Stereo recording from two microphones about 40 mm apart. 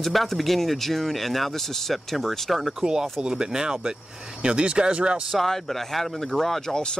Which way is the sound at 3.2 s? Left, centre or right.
Centre.